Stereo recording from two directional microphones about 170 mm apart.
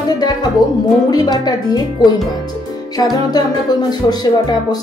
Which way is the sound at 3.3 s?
25° left (ahead or behind).